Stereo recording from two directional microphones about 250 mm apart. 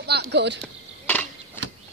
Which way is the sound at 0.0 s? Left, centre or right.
Right.